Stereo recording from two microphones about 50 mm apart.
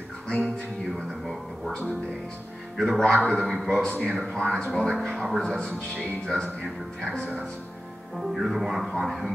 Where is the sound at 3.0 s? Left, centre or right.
Centre.